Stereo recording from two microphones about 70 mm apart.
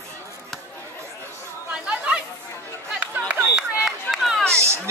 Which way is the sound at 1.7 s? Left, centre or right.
Centre.